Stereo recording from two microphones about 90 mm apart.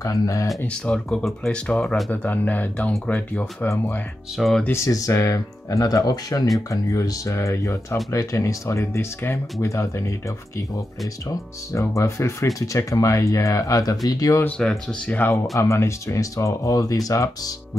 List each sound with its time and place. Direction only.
0.0 s speech: 40° left (ahead or behind)
0.7 s speech: 10° left (ahead or behind)
3.6 s speech: 35° left (ahead or behind)
4.4 s speech: centre (ahead or behind)
4.8 s speech: 40° left (ahead or behind)
11.2 s speech: 35° left (ahead or behind)
14.6 s speech: 10° left (ahead or behind)
15.5 s speech: 35° left (ahead or behind)